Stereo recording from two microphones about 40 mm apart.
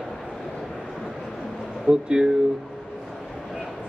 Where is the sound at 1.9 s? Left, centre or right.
Right.